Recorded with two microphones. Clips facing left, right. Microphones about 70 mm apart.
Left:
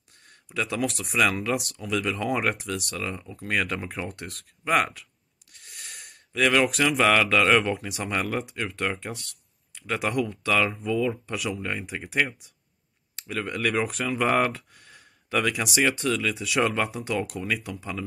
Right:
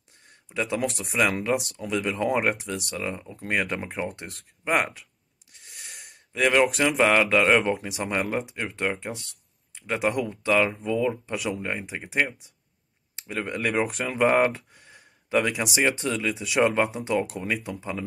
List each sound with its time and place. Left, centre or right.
0.5 s speech: right
14.0 s a sound: right
15.7 s speech: right